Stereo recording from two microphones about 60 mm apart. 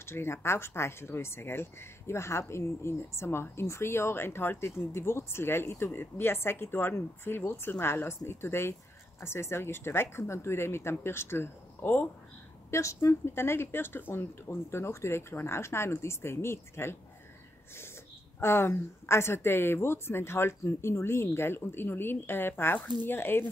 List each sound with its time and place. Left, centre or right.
0.0 s speech: left
12.7 s speech: left
18.4 s speech: left
22.8 s speech: left
23.1 s speech: left